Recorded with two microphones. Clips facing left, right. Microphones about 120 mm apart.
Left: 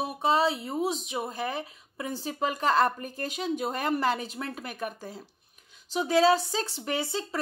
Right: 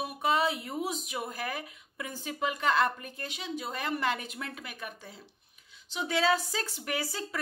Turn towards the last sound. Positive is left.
turn(degrees=25)  # may be behind; listen again after turning